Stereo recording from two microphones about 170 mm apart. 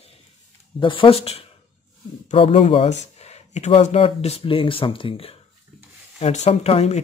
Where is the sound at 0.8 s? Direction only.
30° left (ahead or behind).